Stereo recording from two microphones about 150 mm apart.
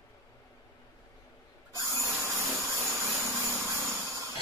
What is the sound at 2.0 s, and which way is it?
Vacuum cleaner, 20° right (ahead or behind).